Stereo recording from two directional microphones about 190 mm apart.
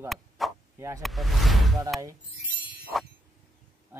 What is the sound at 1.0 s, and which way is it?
Speech, centre (ahead or behind).